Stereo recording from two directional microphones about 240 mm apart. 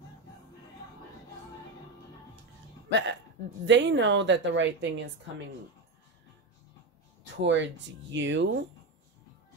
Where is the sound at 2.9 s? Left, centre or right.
Right.